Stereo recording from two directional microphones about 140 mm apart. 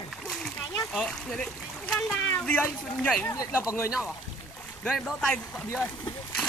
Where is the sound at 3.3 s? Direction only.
25° left (ahead or behind).